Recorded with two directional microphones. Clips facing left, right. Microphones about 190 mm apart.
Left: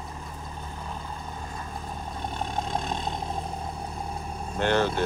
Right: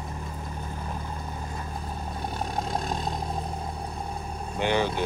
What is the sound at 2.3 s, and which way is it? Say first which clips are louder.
Vehicle: even; 5° right (ahead or behind).